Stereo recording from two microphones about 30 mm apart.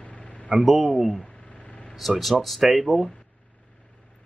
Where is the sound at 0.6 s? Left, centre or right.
Centre.